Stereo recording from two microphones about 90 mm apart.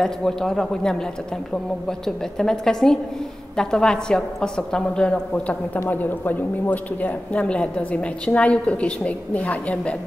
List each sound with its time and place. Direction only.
0.0 s a man's voice: 5° left (ahead or behind)